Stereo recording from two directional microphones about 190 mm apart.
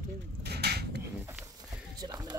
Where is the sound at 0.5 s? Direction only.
60° right (ahead or behind).